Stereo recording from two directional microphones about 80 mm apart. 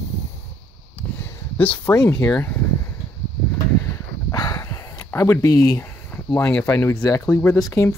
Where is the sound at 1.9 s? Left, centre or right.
Left.